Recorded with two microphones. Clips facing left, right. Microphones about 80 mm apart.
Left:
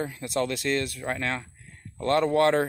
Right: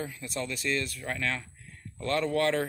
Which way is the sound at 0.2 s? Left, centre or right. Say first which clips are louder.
Left 7 dB; left.